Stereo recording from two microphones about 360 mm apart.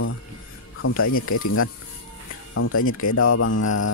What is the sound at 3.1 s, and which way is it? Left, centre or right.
Speech, left.